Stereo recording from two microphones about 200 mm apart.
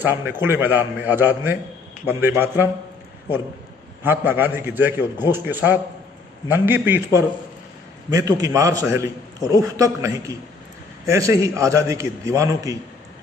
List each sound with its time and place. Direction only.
0.0 s a man's voice: 10° right (ahead or behind)
4.0 s a man's voice: 10° right (ahead or behind)